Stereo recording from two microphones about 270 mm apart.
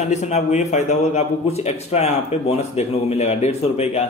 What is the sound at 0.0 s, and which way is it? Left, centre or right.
A man's voice, left.